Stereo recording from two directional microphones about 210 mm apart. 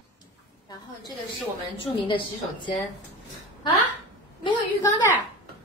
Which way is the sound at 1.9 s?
25° left (ahead or behind).